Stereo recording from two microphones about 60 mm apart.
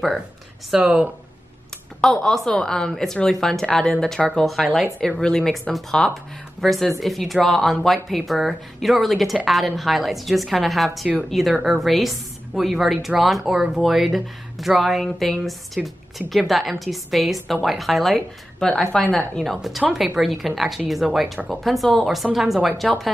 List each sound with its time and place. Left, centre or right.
0.7 s speech: centre
2.2 s a woman's voice: centre
5.0 s a woman's voice: centre